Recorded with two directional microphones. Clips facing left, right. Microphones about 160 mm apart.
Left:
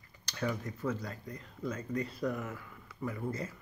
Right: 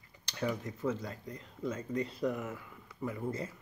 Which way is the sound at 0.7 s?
20° right (ahead or behind).